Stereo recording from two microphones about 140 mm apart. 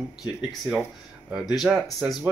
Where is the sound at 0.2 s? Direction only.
Centre (ahead or behind).